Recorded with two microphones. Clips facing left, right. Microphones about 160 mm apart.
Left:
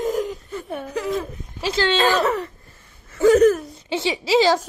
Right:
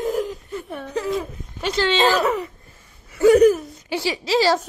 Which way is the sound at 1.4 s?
Centre (ahead or behind).